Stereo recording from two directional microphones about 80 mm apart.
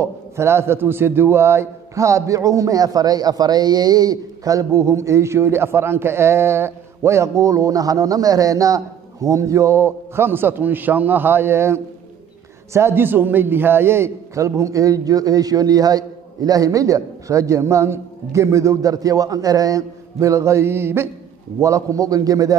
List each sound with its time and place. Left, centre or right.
0.0 s a man's voice: right
21.5 s a man's voice: right